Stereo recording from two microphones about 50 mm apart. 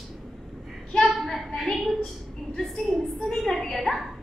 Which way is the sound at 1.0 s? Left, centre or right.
Centre.